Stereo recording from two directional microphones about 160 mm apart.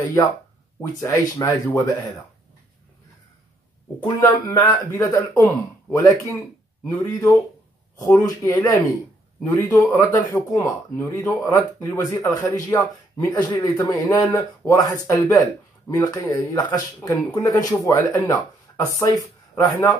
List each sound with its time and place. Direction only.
1.0 s speech: 20° left (ahead or behind)
4.2 s speech: 20° left (ahead or behind)
14.2 s speech: 10° left (ahead or behind)